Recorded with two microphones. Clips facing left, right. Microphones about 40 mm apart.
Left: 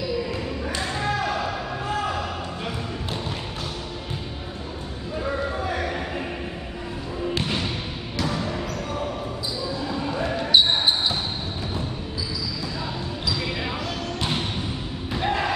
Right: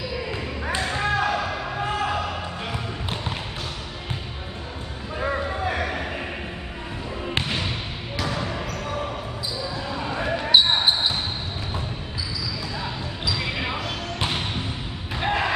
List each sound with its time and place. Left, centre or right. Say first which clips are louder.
0.7 s a sound: right 3 dB; right
10.1 s basketball bounce: right 1 dB; centre
15.1 s basketball bounce: right 1 dB; right